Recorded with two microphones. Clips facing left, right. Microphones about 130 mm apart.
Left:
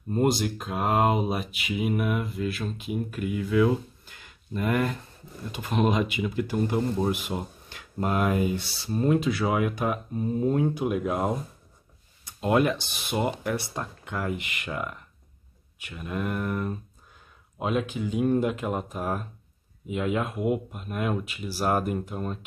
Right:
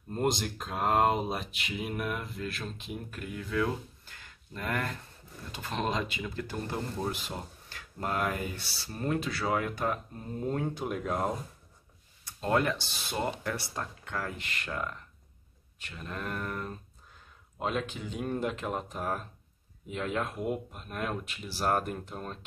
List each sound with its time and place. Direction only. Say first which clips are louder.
0.1 s speech: left 6 dB; 5° left (ahead or behind)